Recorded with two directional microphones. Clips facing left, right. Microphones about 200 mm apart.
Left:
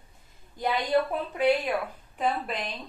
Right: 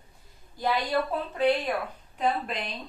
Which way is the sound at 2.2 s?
Centre (ahead or behind).